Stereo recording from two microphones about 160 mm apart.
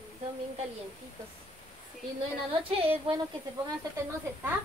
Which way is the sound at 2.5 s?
35° right (ahead or behind).